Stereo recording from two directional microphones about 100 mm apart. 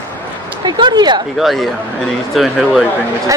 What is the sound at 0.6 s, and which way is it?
Speech, 45° right (ahead or behind).